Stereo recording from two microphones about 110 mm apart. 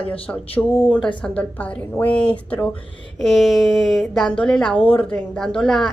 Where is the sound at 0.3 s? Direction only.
25° left (ahead or behind).